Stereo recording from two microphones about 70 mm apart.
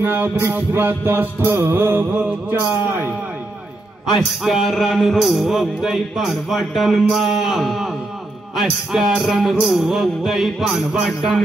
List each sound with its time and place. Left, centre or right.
0.0 s music: right
4.1 s music: centre